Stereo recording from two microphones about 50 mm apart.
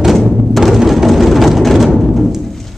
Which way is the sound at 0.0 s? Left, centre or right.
Centre.